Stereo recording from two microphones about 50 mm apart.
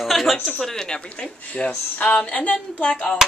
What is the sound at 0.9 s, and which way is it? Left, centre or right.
A woman's voice, centre.